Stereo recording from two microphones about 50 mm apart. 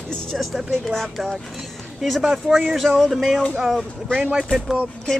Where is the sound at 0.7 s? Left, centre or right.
Centre.